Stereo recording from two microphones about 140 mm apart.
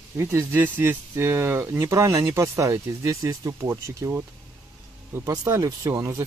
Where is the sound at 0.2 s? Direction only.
20° right (ahead or behind).